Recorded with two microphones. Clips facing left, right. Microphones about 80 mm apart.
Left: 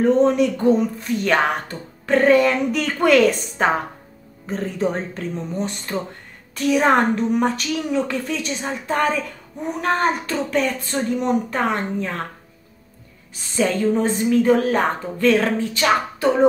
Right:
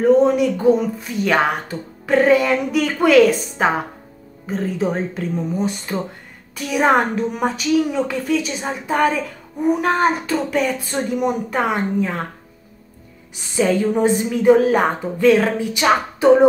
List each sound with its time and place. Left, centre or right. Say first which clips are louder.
0.0 s a woman's voice: right 2 dB; centre
13.6 s a woman's voice: right 2 dB; centre
15.7 s a woman's voice: right 2 dB; centre